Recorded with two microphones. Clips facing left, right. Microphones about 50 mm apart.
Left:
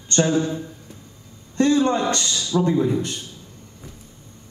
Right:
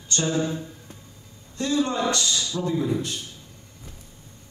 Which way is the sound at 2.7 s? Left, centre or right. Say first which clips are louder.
Left 4 dB; left.